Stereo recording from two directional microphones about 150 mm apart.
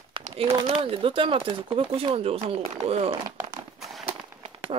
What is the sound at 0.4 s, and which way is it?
Speech, 40° right (ahead or behind).